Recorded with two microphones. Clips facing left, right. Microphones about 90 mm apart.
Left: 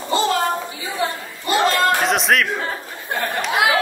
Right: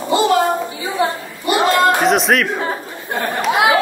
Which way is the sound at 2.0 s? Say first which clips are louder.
Right 4 dB; centre (ahead or behind).